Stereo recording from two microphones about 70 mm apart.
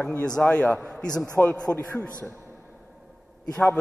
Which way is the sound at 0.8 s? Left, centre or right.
Centre.